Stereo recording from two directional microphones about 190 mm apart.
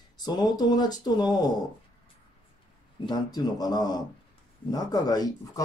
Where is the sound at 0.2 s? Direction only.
20° left (ahead or behind).